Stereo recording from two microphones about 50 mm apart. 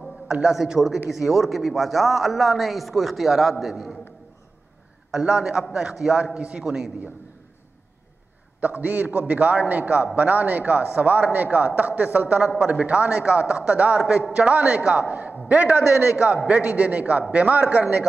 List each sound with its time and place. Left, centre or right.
0.3 s a man's voice: centre
5.1 s a man's voice: centre
6.6 s a man's voice: centre
8.5 s a man's voice: right
12.4 s a man's voice: centre
12.8 s a man's voice: right